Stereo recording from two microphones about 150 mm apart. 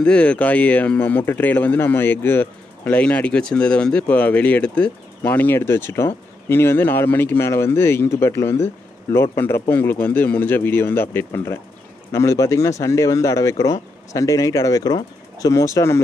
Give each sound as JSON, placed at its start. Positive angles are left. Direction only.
{"t": 0.0, "sound": "speech", "side_deg": 10}